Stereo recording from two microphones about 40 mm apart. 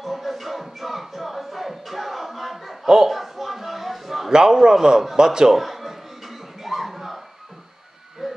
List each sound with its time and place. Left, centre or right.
0.0 s music: centre
4.3 s a man's voice: centre
5.6 s music: centre
8.2 s owl: centre